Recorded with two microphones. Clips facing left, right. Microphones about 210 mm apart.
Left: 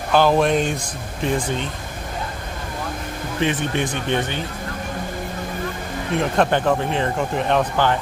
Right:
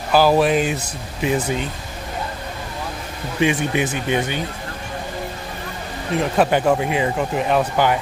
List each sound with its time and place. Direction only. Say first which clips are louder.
0.1 s speech: right 1 dB; 5° right (ahead or behind)
3.3 s speech: right 3 dB; 10° right (ahead or behind)
6.1 s speech: right 1 dB; 5° right (ahead or behind)